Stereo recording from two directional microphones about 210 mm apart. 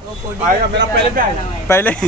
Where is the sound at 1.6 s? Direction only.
10° left (ahead or behind).